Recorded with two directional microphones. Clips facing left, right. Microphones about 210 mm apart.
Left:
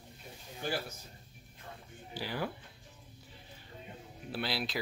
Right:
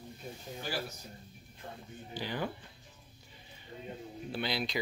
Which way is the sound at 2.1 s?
5° left (ahead or behind).